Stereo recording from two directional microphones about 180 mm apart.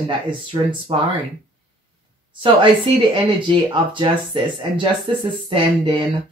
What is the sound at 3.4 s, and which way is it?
Speech, 25° right (ahead or behind).